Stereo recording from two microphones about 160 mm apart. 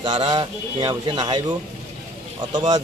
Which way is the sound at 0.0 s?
30° right (ahead or behind).